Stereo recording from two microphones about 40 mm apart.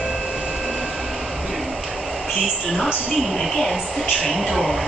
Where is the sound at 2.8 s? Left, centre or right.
Right.